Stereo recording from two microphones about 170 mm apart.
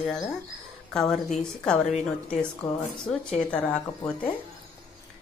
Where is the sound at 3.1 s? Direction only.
5° left (ahead or behind).